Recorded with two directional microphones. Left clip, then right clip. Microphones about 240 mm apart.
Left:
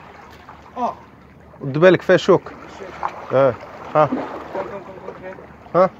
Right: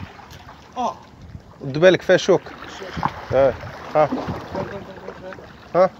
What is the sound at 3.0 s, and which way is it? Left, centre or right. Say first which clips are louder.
Boat: right 1 dB; centre.